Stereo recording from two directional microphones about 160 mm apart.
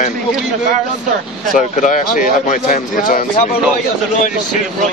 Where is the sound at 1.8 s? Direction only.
55° left (ahead or behind).